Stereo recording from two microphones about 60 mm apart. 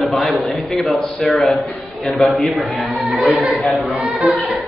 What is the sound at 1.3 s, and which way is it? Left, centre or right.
Speech, centre.